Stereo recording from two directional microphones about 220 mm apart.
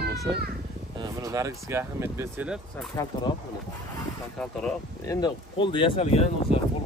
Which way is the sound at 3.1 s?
15° left (ahead or behind).